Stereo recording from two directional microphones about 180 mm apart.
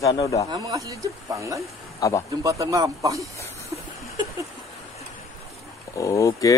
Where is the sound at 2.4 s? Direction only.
20° right (ahead or behind).